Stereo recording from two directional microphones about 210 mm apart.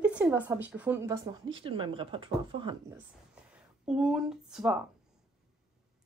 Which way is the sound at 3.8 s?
5° right (ahead or behind).